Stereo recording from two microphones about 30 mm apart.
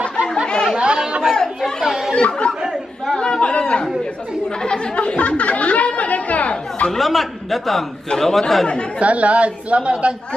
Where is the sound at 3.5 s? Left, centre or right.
Left.